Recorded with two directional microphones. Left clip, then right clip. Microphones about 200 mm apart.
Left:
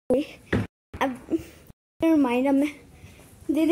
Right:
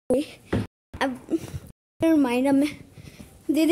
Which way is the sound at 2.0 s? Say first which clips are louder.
Even; 5° right (ahead or behind).